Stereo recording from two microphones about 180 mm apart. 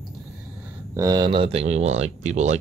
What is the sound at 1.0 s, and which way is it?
Speech, 20° right (ahead or behind).